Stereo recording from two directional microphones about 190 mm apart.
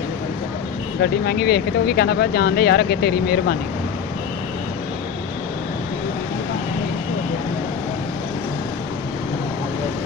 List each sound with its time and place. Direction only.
1.0 s speech: 55° left (ahead or behind)